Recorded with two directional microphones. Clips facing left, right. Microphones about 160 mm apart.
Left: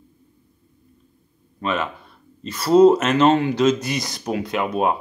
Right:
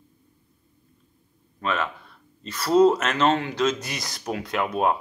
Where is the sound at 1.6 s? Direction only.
10° left (ahead or behind).